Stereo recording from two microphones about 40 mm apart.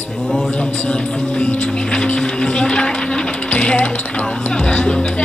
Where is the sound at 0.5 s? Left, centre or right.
Left.